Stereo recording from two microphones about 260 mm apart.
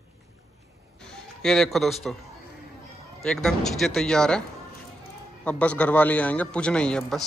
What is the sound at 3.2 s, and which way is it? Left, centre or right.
A man's voice, centre.